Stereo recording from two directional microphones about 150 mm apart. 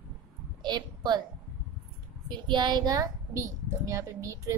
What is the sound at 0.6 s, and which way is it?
Speech, 30° right (ahead or behind).